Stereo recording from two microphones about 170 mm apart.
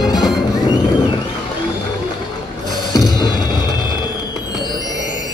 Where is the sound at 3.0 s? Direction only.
25° left (ahead or behind).